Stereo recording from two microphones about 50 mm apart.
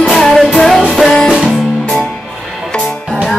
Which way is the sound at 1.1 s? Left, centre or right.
Centre.